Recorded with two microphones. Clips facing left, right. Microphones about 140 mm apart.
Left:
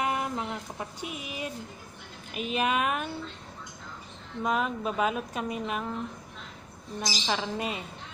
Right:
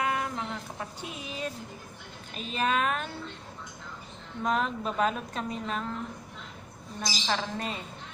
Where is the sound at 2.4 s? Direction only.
15° left (ahead or behind).